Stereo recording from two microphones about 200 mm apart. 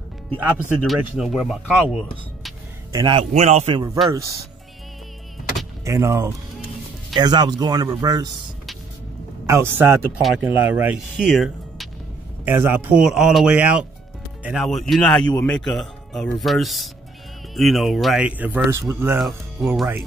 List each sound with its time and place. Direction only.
0.4 s speech: 10° right (ahead or behind)
2.9 s a man's voice: 20° right (ahead or behind)
5.9 s a man's voice: 15° right (ahead or behind)
9.5 s speech: 10° right (ahead or behind)
19.1 s speech: centre (ahead or behind)